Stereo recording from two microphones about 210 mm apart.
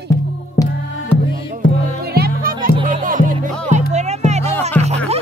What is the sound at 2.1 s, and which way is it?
Music, 45° right (ahead or behind).